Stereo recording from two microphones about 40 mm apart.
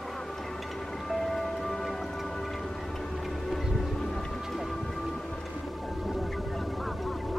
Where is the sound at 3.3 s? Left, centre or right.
Centre.